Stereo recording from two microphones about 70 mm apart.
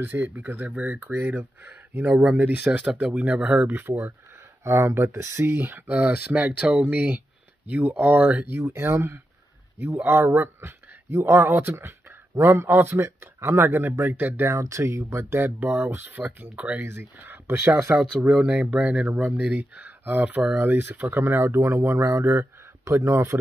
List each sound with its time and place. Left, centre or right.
0.0 s speech: right
0.7 s speech: centre
2.6 s speech: centre
3.2 s speech: centre
3.7 s speech: right
13.7 s speech: right
14.5 s speech: right
15.6 s speech: right
18.2 s speech: centre; by 23.4 s right